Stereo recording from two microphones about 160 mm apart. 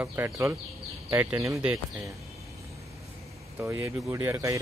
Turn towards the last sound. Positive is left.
turn(degrees=-20)  # may be behind; listen again after turning